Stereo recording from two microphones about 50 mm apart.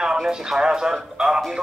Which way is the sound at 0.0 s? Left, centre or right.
Centre.